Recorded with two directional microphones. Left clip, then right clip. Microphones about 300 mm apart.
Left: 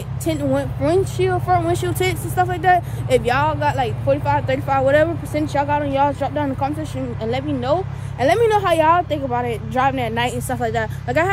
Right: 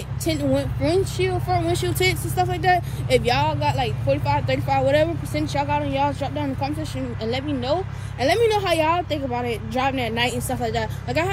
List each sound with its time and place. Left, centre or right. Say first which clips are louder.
0.2 s speech: left 2 dB; centre